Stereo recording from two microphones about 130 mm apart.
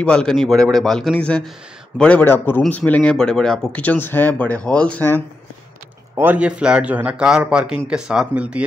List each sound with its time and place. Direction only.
0.0 s a man's voice: 5° left (ahead or behind)
6.1 s a man's voice: 15° right (ahead or behind)